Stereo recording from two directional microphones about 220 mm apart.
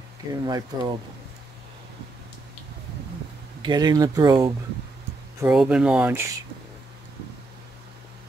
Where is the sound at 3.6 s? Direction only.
20° right (ahead or behind).